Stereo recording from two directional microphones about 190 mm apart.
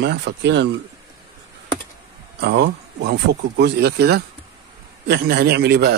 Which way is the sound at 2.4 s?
60° right (ahead or behind).